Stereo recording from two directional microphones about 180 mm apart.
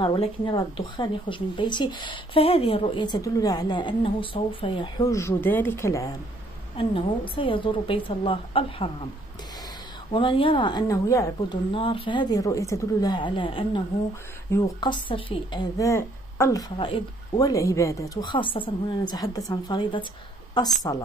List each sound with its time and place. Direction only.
0.0 s speech: 25° left (ahead or behind)
6.8 s speech: 30° left (ahead or behind)
10.1 s speech: 30° left (ahead or behind)
11.7 s speech: 30° left (ahead or behind)